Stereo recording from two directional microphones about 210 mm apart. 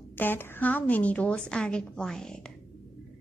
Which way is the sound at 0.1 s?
10° left (ahead or behind).